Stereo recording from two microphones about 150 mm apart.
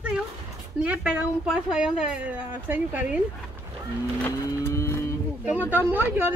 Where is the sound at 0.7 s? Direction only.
10° right (ahead or behind).